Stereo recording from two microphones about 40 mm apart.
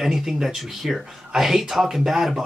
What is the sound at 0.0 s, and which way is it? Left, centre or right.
Speech, centre.